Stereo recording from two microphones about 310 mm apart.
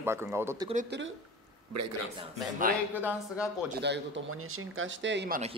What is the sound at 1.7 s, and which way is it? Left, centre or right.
Speech, right.